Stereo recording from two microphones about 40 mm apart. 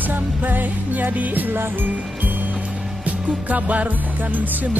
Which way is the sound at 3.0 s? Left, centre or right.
Right.